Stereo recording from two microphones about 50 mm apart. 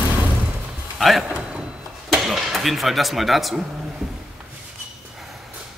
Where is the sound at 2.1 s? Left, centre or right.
Centre.